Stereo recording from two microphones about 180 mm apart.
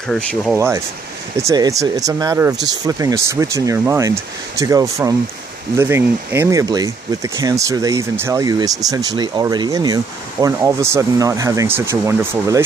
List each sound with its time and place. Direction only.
0.1 s speech: 5° left (ahead or behind)
0.6 s speech: 15° right (ahead or behind)